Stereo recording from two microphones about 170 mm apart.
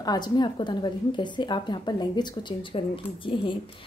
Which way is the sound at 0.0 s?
25° left (ahead or behind).